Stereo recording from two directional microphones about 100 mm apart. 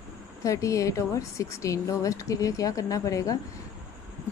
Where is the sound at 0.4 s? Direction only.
35° left (ahead or behind).